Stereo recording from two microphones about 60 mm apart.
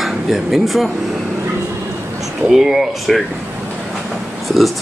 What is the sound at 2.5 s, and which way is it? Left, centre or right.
Speech, centre.